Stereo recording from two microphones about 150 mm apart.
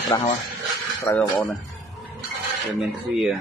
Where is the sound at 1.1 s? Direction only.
15° left (ahead or behind).